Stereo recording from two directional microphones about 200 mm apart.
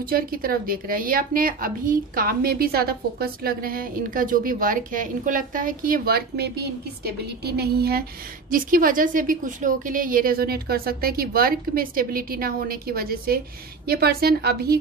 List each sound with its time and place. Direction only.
0.1 s a woman's voice: 45° right (ahead or behind)